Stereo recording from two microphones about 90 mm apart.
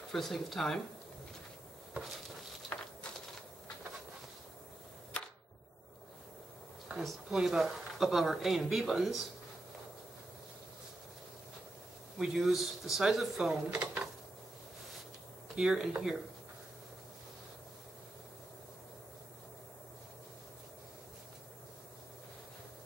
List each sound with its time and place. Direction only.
0.1 s speech: centre (ahead or behind)
2.7 s a sound: 20° left (ahead or behind)
7.0 s speech: 5° right (ahead or behind)
12.2 s speech: 5° right (ahead or behind)
15.5 s speech: 5° right (ahead or behind)